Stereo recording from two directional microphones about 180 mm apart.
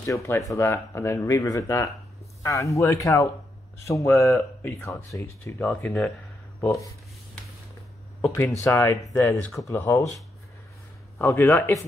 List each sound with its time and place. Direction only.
0.0 s speech: 15° left (ahead or behind)
8.3 s speech: 15° left (ahead or behind)
11.1 s speech: 10° left (ahead or behind)